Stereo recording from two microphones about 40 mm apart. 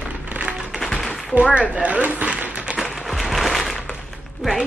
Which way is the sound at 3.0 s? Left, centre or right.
Centre.